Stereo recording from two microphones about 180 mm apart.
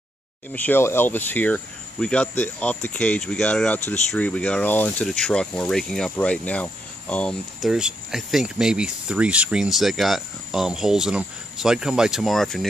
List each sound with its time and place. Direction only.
0.5 s speech: 10° left (ahead or behind)